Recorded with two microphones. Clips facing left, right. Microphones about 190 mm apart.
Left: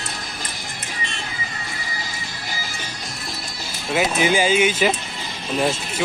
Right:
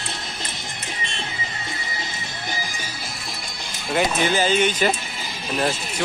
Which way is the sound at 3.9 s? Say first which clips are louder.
Left 1 dB; 5° left (ahead or behind).